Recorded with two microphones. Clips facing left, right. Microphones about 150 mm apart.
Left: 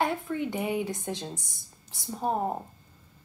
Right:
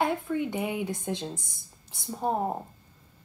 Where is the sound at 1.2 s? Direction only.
15° left (ahead or behind).